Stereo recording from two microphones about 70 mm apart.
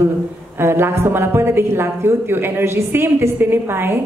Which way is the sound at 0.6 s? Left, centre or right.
Right.